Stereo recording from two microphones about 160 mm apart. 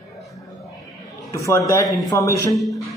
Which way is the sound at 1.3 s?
20° left (ahead or behind).